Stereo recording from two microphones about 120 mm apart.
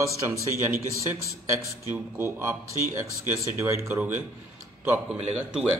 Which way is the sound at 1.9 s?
20° right (ahead or behind).